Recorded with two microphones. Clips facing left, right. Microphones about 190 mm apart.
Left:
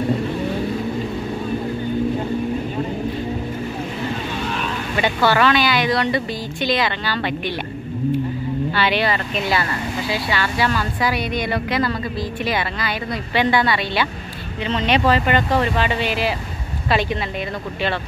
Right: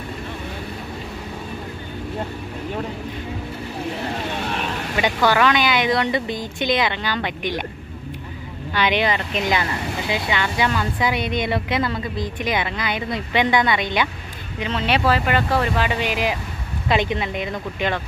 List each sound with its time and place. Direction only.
4.9 s speech: 15° right (ahead or behind)
8.7 s speech: 15° right (ahead or behind)